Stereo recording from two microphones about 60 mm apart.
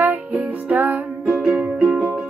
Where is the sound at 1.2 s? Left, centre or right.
Centre.